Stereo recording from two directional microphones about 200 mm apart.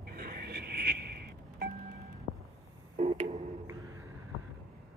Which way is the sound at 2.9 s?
30° right (ahead or behind).